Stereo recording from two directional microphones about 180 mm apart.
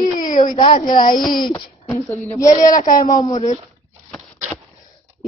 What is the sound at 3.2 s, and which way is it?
Speech, 35° left (ahead or behind).